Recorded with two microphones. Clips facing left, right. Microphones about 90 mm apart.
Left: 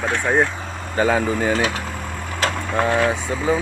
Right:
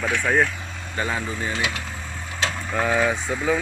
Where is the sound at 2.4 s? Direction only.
65° left (ahead or behind).